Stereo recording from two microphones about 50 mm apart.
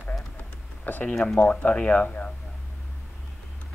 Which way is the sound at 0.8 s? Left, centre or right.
Left.